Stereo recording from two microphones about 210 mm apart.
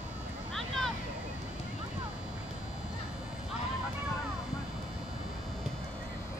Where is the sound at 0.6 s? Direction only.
Centre (ahead or behind).